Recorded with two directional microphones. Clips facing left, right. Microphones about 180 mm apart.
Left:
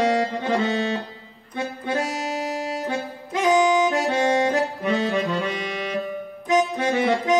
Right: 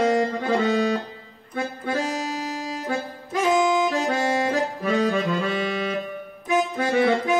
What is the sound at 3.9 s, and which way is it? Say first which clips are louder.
Accordion: left 2 dB; 20° left (ahead or behind).